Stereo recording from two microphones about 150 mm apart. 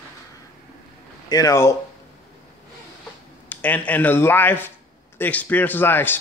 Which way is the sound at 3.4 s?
10° left (ahead or behind).